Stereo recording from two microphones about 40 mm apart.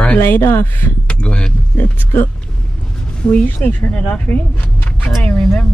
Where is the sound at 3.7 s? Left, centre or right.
Left.